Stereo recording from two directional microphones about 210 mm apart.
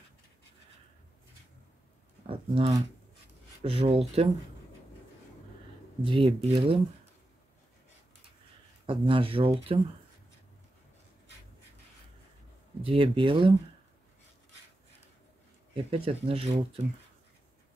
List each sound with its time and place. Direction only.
2.2 s speech: 25° right (ahead or behind)
6.0 s speech: 25° right (ahead or behind)
8.8 s speech: 25° right (ahead or behind)
12.8 s speech: 25° right (ahead or behind)
15.7 s speech: 25° right (ahead or behind)